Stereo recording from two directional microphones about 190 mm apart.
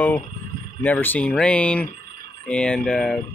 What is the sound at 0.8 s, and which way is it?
Speech, 10° left (ahead or behind).